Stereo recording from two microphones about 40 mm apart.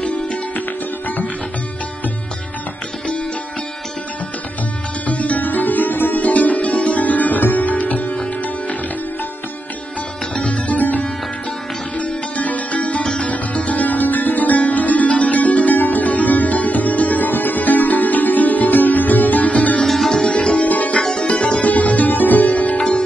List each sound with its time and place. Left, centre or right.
5.0 s music: left
6.2 s music: left
10.3 s music: left
13.0 s music: centre
13.3 s music: left
20.1 s music: centre
20.6 s music: left
21.0 s music: left
21.6 s music: left
22.5 s sitar: left
22.8 s sitar: left